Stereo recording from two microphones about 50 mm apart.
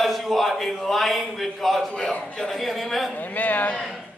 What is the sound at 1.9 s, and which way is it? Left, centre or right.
Speech, centre.